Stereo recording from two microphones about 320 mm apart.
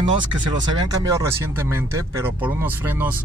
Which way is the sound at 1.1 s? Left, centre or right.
Centre.